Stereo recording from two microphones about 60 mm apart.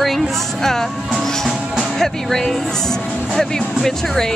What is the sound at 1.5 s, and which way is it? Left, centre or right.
Speech, centre.